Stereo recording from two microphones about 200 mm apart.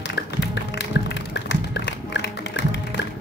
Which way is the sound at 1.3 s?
60° left (ahead or behind).